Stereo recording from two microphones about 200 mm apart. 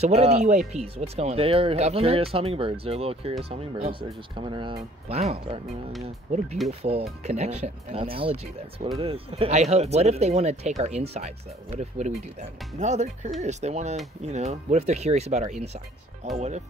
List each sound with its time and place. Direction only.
0.0 s speech: 30° right (ahead or behind)
6.7 s speech: 30° right (ahead or behind)